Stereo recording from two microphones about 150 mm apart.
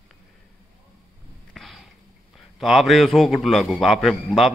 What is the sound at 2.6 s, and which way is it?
A man's voice, centre (ahead or behind).